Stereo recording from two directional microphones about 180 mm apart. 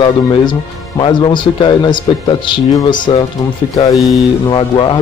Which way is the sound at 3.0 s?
25° left (ahead or behind).